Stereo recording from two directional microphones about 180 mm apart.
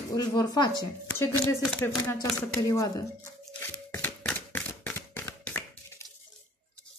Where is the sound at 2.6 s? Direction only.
20° left (ahead or behind).